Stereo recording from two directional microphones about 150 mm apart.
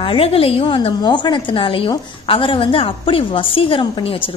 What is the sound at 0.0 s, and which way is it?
A woman's voice, 35° left (ahead or behind).